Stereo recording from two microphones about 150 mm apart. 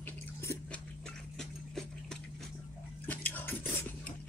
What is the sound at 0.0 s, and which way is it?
Chewing, 20° left (ahead or behind).